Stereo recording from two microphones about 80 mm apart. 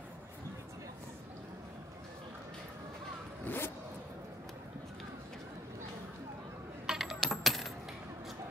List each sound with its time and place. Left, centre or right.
3.4 s vehicle: left
6.9 s coin: centre